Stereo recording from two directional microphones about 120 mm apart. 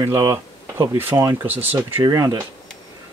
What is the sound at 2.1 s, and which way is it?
Speech, 30° right (ahead or behind).